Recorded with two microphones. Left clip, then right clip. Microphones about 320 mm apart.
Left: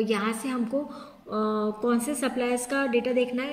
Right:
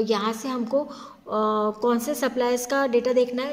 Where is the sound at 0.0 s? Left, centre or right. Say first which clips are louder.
Right 3 dB; centre.